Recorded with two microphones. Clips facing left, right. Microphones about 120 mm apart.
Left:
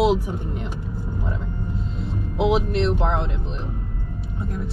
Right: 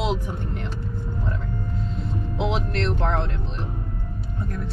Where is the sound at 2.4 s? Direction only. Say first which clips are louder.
Left 6 dB; 5° left (ahead or behind).